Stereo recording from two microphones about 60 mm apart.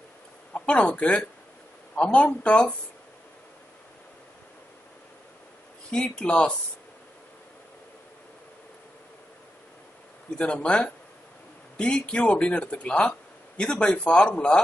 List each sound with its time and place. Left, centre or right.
0.6 s a man's voice: centre
5.9 s speech: centre
10.3 s speech: centre